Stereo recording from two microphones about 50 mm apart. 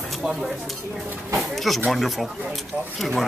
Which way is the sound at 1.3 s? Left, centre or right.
Centre.